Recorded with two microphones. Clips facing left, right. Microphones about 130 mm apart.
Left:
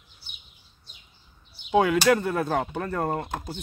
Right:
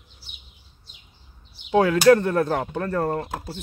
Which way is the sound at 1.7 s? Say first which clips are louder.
Right 4 dB; 15° left (ahead or behind).